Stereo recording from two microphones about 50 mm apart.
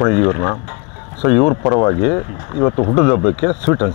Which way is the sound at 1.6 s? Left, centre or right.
Left.